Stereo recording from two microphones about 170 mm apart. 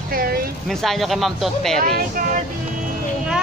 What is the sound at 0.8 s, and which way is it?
Speech, centre (ahead or behind).